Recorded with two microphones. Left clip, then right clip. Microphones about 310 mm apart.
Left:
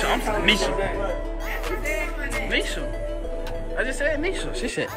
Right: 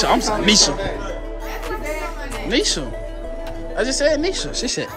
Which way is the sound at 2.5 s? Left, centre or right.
Centre.